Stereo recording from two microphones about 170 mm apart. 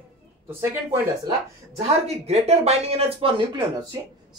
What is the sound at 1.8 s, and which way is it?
Speech, 40° right (ahead or behind).